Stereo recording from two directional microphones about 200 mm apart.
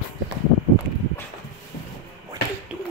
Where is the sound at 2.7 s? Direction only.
5° right (ahead or behind).